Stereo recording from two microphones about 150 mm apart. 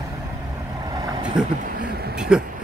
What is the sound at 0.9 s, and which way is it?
Vehicle, 25° right (ahead or behind).